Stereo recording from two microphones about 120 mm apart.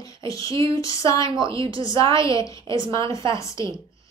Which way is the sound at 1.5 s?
45° right (ahead or behind).